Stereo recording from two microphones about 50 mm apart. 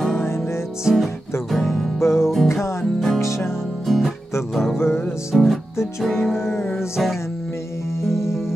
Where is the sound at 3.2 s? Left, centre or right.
Left.